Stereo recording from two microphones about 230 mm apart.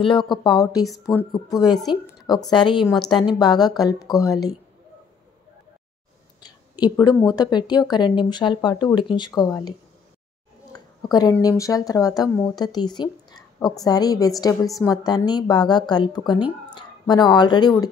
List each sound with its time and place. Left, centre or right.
0.0 s a woman's voice: left
6.4 s a woman's voice: centre
10.7 s a sound: centre
11.3 s speech: centre